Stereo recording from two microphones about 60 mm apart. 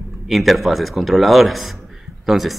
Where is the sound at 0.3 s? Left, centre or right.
Centre.